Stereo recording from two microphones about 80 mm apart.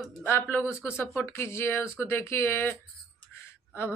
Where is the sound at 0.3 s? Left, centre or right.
Left.